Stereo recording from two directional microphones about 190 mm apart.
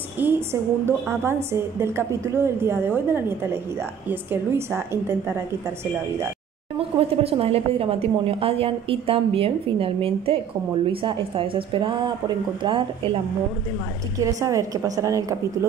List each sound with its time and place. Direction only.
0.2 s a woman's voice: 10° right (ahead or behind)
6.8 s a woman's voice: 30° right (ahead or behind)
14.1 s a woman's voice: 15° right (ahead or behind)